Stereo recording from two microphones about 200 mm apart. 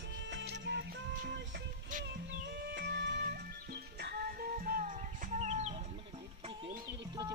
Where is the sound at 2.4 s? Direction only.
60° right (ahead or behind); by 5.8 s 35° right (ahead or behind).